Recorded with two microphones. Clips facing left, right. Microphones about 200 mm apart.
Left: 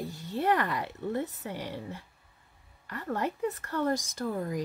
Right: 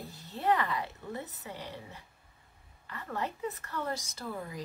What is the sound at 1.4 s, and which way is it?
Speech, 55° left (ahead or behind).